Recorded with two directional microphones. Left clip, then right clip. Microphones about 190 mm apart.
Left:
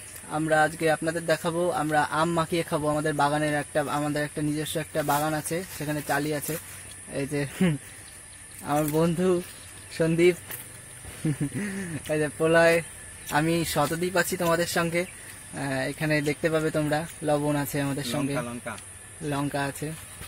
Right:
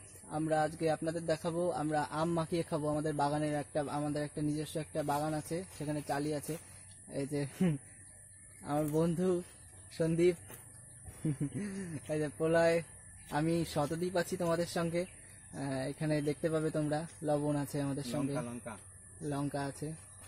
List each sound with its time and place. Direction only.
0.3 s speech: 5° left (ahead or behind)
11.6 s speech: 20° left (ahead or behind)
13.3 s speech: 5° left (ahead or behind)